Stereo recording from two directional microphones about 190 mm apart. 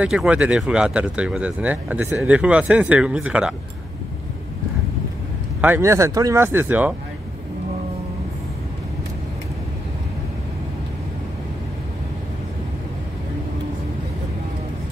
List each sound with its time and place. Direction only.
0.0 s speech: 5° right (ahead or behind)
5.6 s speech: 10° right (ahead or behind)